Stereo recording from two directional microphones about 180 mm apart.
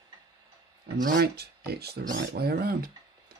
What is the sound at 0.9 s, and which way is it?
Speech, 50° right (ahead or behind).